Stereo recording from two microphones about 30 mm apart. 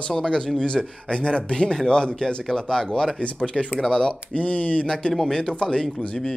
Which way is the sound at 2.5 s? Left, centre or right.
Centre.